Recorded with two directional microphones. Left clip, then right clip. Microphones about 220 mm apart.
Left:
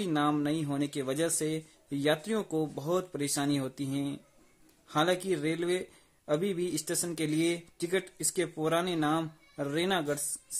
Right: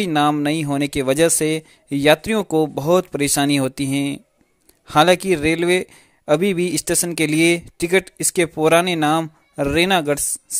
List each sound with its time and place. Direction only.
0.0 s a man's voice: 35° right (ahead or behind)